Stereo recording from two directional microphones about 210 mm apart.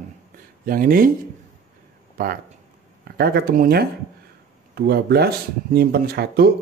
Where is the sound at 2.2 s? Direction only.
40° right (ahead or behind).